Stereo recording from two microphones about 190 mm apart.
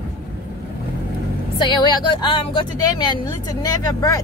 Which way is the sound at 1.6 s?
25° left (ahead or behind).